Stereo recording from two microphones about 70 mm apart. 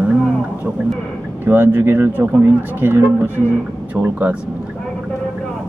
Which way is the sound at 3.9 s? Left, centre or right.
Right.